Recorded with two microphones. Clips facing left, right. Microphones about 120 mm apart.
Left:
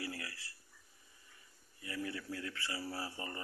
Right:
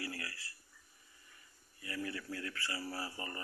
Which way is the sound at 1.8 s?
20° left (ahead or behind).